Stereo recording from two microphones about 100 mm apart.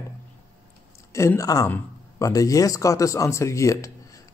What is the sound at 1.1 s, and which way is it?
A man's voice, 30° left (ahead or behind).